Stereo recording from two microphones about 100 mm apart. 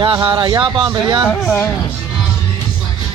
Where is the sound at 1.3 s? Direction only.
15° left (ahead or behind).